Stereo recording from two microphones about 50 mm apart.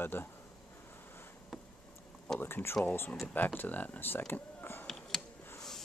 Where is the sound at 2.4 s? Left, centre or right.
Left.